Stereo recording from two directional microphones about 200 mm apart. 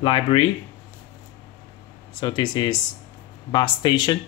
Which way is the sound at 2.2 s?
20° left (ahead or behind).